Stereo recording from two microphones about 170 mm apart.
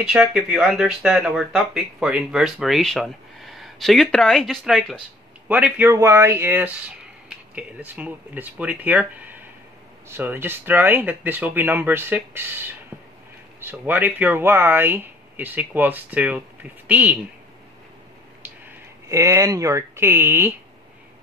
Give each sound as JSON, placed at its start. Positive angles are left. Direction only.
{"t": 0.0, "sound": "speech", "side_deg": -5}
{"t": 5.5, "sound": "speech", "side_deg": -10}
{"t": 19.0, "sound": "speech", "side_deg": -20}